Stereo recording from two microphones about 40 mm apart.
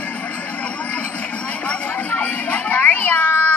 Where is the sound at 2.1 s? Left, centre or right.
Left.